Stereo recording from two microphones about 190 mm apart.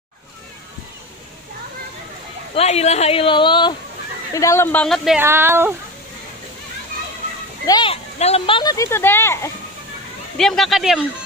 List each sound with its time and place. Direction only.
2.5 s a woman's voice: 35° left (ahead or behind); by 4.8 s 15° left (ahead or behind)
4.8 s speech: centre (ahead or behind)
5.2 s speech: 10° right (ahead or behind)
7.6 s speech: 25° left (ahead or behind)
10.3 s speech: centre (ahead or behind)